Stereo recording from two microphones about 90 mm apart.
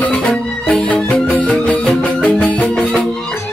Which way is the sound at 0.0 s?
15° left (ahead or behind).